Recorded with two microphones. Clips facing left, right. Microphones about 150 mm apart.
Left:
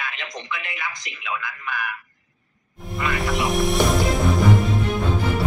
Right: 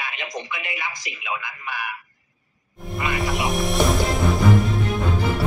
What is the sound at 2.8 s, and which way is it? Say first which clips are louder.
Music: even; centre (ahead or behind).